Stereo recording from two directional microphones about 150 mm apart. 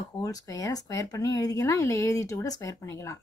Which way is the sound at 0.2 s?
25° left (ahead or behind).